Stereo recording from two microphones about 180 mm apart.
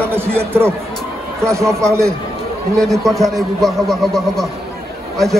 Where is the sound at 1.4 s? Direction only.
15° right (ahead or behind).